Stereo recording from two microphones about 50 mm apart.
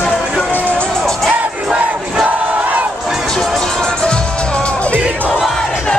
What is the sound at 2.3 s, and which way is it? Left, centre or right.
Battle cry, right.